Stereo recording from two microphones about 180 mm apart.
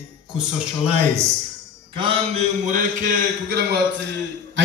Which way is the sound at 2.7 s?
50° right (ahead or behind).